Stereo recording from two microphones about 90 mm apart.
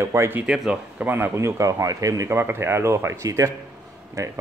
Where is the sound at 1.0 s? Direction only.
25° right (ahead or behind).